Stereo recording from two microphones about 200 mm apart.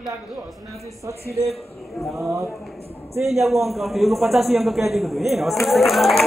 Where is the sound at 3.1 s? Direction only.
30° right (ahead or behind).